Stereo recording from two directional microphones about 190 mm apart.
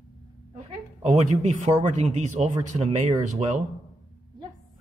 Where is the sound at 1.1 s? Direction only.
35° right (ahead or behind).